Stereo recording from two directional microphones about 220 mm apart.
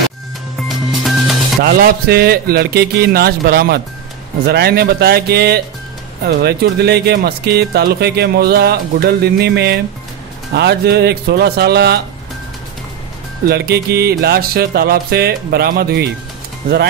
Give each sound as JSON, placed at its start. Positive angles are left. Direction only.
{"t": 0.7, "sound": "music", "side_deg": 0}
{"t": 1.6, "sound": "speech", "side_deg": -45}
{"t": 13.5, "sound": "speech", "side_deg": -45}